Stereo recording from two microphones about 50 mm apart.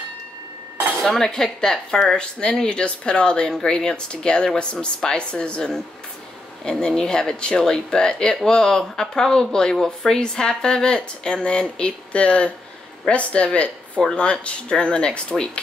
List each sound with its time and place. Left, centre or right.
1.0 s a woman's voice: centre